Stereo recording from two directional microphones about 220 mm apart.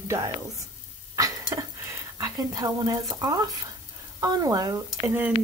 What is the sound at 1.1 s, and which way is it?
Stir, 15° right (ahead or behind).